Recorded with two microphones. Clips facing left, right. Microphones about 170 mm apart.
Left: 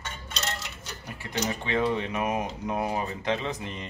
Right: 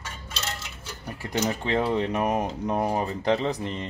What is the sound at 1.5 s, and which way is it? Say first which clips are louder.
Speech: right 1 dB; 40° right (ahead or behind).